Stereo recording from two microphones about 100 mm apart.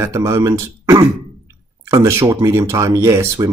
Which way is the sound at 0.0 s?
30° right (ahead or behind).